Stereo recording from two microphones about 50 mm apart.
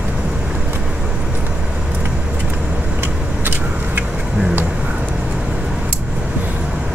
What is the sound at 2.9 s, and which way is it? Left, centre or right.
Vehicle, right.